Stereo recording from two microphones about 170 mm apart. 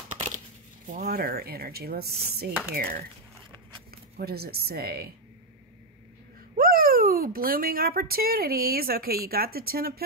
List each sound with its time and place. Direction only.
0.8 s speech: 55° right (ahead or behind)
6.5 s speech: 60° right (ahead or behind)